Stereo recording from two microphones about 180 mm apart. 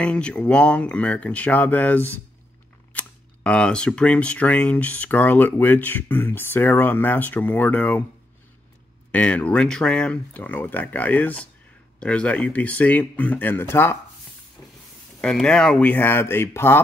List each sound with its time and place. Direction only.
0.0 s speech: 5° left (ahead or behind)
9.1 s speech: 5° left (ahead or behind)
14.6 s a sound: 15° left (ahead or behind)
15.1 s speech: 5° left (ahead or behind)